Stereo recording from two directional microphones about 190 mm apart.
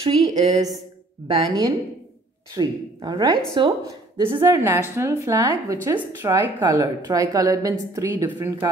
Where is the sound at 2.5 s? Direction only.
20° right (ahead or behind).